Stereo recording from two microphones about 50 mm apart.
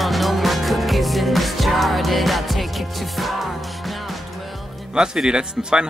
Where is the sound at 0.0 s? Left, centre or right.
Centre.